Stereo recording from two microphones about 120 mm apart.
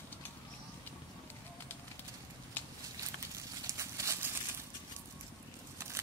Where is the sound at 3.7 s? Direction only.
25° right (ahead or behind).